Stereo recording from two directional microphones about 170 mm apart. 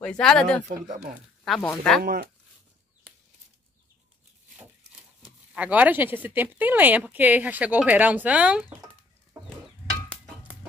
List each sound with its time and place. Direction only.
0.0 s speech: 5° left (ahead or behind)
0.7 s speech: 45° right (ahead or behind)
1.4 s speech: centre (ahead or behind)
2.0 s speech: 60° right (ahead or behind)
5.2 s speech: 5° right (ahead or behind)